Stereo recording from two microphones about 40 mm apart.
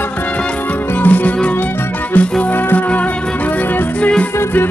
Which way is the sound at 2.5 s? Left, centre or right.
Left.